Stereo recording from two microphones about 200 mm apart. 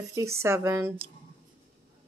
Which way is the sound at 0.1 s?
15° right (ahead or behind).